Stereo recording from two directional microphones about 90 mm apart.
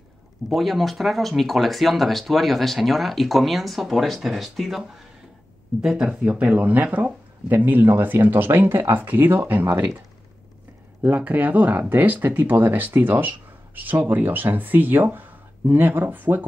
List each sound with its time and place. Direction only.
0.5 s speech: centre (ahead or behind); by 9.8 s 25° right (ahead or behind)
11.0 s speech: 20° right (ahead or behind)